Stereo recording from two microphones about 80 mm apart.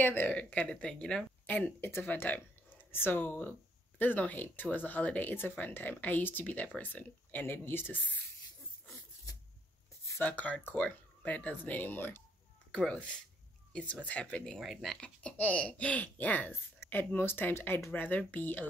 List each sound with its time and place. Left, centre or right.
0.0 s speech: left
10.1 s speech: left
12.7 s speech: centre
14.5 s speech: centre
15.0 s speech: centre